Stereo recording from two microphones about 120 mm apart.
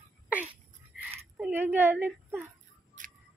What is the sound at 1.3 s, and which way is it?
A woman's voice, 15° right (ahead or behind).